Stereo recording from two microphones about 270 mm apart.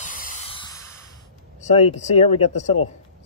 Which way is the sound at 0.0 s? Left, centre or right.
Left.